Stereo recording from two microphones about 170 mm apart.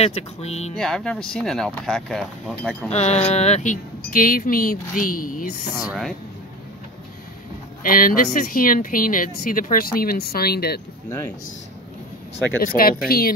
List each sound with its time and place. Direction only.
0.0 s speech: 40° left (ahead or behind)
0.7 s speech: 5° left (ahead or behind)
2.9 s speech: 40° left (ahead or behind)
5.8 s speech: centre (ahead or behind)
7.8 s speech: 55° left (ahead or behind)
12.5 s speech: 60° left (ahead or behind)